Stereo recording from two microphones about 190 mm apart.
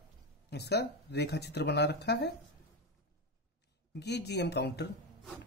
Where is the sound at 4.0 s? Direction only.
60° left (ahead or behind).